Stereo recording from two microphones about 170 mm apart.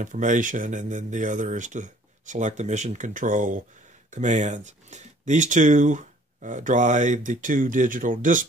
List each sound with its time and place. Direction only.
0.0 s speech: 45° right (ahead or behind)